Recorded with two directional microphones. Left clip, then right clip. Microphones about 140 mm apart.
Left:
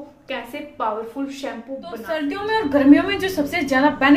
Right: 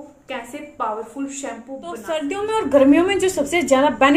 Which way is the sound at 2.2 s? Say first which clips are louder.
Left 1 dB; 35° right (ahead or behind).